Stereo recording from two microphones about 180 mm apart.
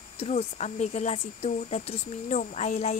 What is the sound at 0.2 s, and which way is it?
Speech, 35° left (ahead or behind).